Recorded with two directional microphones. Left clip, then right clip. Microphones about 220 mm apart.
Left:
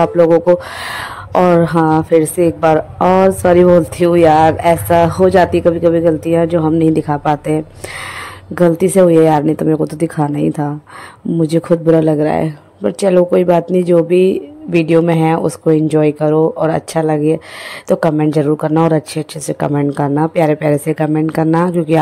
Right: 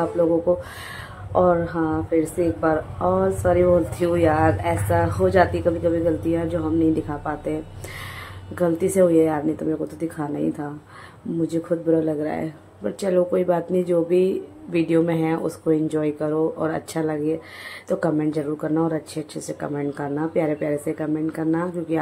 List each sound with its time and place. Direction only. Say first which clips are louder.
0.8 s a woman's voice: left 14 dB; 45° left (ahead or behind)